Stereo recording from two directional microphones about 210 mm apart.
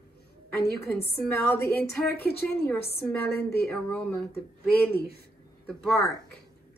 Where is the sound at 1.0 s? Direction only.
50° left (ahead or behind).